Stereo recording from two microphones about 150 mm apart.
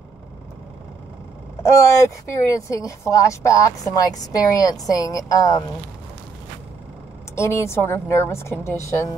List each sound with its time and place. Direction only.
1.6 s speech: 20° left (ahead or behind)
7.3 s a woman's voice: 20° left (ahead or behind)